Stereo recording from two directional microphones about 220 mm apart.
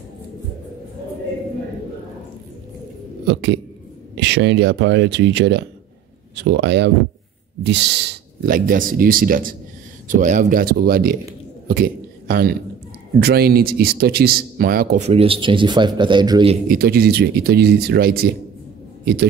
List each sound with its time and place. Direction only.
3.3 s speech: 55° right (ahead or behind)
11.6 s a sound: 40° right (ahead or behind)
13.2 s speech: 45° right (ahead or behind); by 16.5 s 20° right (ahead or behind)
16.6 s speech: 45° right (ahead or behind)